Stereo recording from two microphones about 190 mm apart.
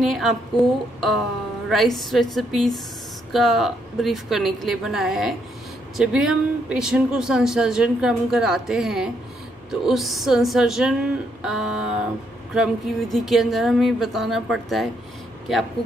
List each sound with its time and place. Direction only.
0.0 s speech: centre (ahead or behind)
1.7 s speech: centre (ahead or behind)